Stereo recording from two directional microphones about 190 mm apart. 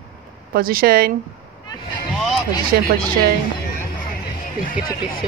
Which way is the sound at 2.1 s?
Centre (ahead or behind).